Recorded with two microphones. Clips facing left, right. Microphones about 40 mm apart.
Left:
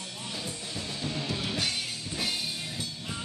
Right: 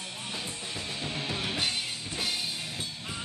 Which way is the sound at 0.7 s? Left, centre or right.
Right.